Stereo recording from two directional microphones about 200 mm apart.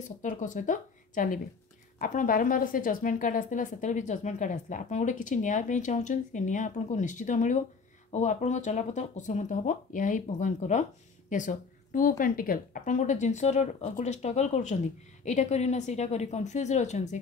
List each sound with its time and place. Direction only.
0.2 s speech: 40° left (ahead or behind)